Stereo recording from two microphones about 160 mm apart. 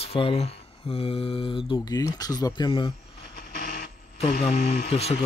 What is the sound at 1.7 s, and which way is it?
Speech, 25° left (ahead or behind).